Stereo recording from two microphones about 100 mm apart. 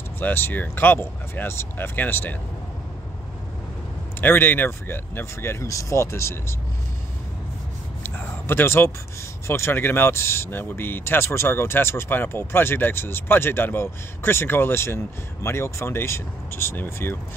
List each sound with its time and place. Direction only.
0.2 s speech: 20° left (ahead or behind)
4.2 s speech: 20° left (ahead or behind)
8.0 s a sound: 20° left (ahead or behind)
9.5 s speech: 25° left (ahead or behind)